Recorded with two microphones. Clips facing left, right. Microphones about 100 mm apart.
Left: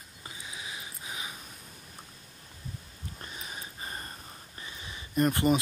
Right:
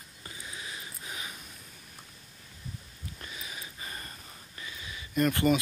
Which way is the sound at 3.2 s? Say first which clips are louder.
Left 1 dB; 40° left (ahead or behind).